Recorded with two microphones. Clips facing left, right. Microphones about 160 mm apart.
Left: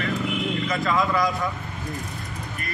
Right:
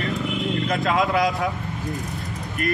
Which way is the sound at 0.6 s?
55° right (ahead or behind).